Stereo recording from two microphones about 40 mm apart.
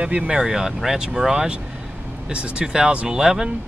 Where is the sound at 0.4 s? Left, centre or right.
Centre.